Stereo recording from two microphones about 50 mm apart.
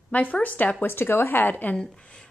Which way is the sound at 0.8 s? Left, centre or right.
Left.